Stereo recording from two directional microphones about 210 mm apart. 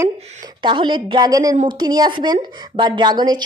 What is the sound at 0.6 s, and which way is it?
Speech, 25° right (ahead or behind).